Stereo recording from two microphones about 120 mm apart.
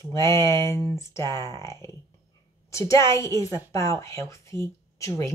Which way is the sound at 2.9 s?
25° left (ahead or behind).